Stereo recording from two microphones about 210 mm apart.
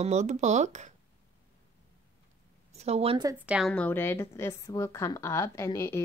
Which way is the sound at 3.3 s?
5° right (ahead or behind).